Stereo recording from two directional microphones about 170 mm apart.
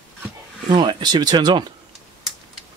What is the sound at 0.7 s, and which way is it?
Speech, 25° right (ahead or behind).